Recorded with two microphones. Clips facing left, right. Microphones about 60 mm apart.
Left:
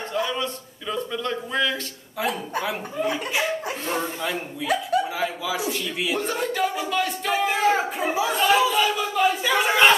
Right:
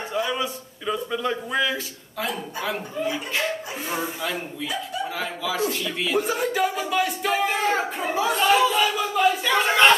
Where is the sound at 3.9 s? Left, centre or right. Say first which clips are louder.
Even; centre.